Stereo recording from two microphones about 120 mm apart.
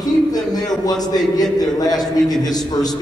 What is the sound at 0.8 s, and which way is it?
A man's voice, 35° left (ahead or behind).